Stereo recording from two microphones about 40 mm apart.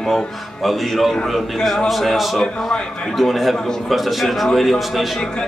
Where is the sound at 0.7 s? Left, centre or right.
Centre.